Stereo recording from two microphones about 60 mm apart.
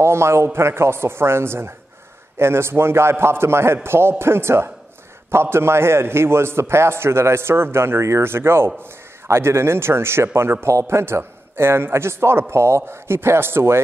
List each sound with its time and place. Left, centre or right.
0.0 s a man's voice: right